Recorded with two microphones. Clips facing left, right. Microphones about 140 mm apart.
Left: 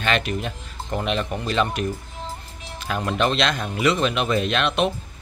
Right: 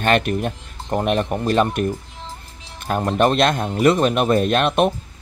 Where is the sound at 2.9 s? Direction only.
45° right (ahead or behind).